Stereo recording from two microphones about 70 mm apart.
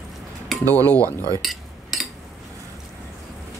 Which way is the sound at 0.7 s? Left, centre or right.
Right.